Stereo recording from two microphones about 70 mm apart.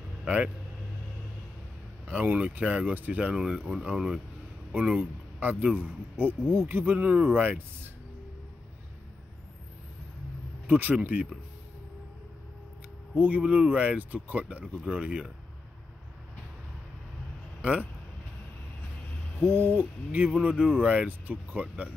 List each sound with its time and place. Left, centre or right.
2.0 s speech: right
4.7 s speech: right
5.8 s owl: right
6.6 s speech: right
10.7 s speech: right
13.2 s speech: centre
17.6 s a sound: centre
19.5 s owl: right
20.4 s speech: centre